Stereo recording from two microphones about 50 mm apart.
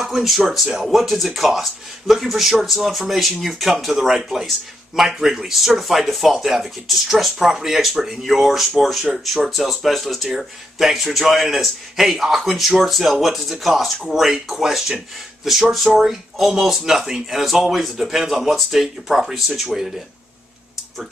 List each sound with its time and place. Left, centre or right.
0.0 s speech: centre